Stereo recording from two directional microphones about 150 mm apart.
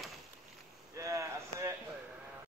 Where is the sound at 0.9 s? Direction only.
20° right (ahead or behind).